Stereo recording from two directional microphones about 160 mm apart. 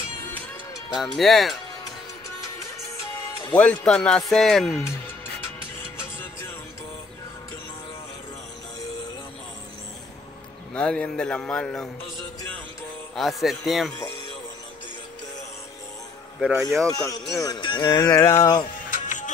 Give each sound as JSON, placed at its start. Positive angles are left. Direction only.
{"t": 0.8, "sound": "speech", "side_deg": 0}
{"t": 3.5, "sound": "speech", "side_deg": 10}
{"t": 5.9, "sound": "music", "side_deg": 15}
{"t": 10.7, "sound": "speech", "side_deg": 5}
{"t": 13.1, "sound": "speech", "side_deg": 0}
{"t": 16.3, "sound": "speech", "side_deg": -5}
{"t": 16.9, "sound": "speech", "side_deg": 20}
{"t": 18.9, "sound": "music", "side_deg": 50}